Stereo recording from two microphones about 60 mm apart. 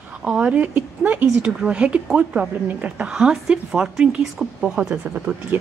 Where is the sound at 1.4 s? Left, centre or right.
Centre.